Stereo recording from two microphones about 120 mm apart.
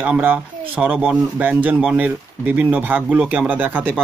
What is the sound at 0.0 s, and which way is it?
Speech, 10° right (ahead or behind).